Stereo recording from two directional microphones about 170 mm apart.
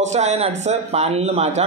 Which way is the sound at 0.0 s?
40° right (ahead or behind).